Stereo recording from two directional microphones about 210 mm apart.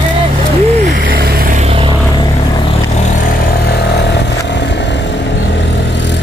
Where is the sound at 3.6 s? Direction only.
50° left (ahead or behind).